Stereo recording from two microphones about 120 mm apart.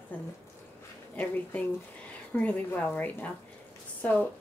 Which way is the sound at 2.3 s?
10° left (ahead or behind).